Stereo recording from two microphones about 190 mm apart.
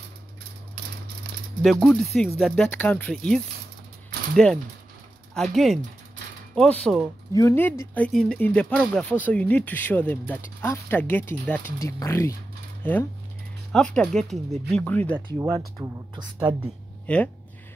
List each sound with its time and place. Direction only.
1.6 s speech: centre (ahead or behind)
5.3 s speech: centre (ahead or behind)
7.3 s speech: 15° left (ahead or behind)
15.3 s speech: 20° right (ahead or behind)
17.0 s speech: 10° left (ahead or behind)